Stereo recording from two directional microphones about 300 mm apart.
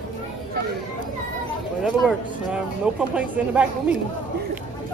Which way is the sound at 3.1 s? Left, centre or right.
Centre.